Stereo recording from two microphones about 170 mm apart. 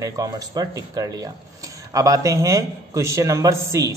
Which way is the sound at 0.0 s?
20° right (ahead or behind).